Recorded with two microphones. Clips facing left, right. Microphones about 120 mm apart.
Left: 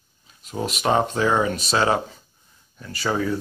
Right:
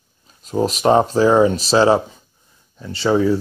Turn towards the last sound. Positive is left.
turn(degrees=-25)  # may be behind; listen again after turning